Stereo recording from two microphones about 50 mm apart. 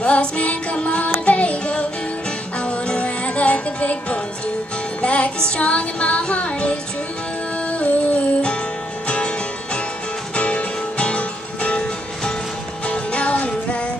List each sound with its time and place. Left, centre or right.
0.0 s music: left
10.3 s music: left